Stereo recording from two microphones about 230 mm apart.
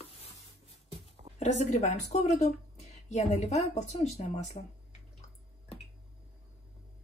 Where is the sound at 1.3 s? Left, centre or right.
Left.